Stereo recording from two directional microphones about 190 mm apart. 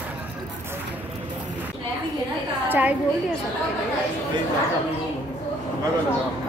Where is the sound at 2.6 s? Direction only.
10° right (ahead or behind).